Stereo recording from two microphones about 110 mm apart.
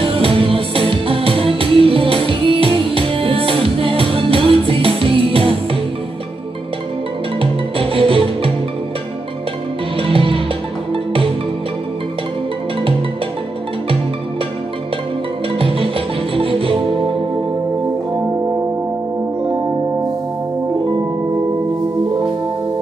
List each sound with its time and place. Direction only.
0.0 s music: 55° right (ahead or behind)
7.3 s music: 55° right (ahead or behind)
9.9 s music: 55° right (ahead or behind)
15.5 s music: 55° right (ahead or behind)